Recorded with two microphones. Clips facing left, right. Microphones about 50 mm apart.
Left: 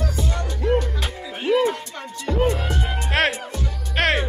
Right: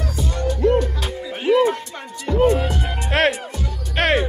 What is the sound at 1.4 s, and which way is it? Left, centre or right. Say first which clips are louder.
Music: right 3 dB; centre.